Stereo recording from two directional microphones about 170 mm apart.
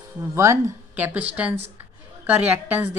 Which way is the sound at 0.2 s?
15° right (ahead or behind).